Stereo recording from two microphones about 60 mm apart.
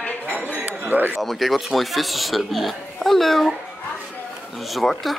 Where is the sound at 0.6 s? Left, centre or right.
Right.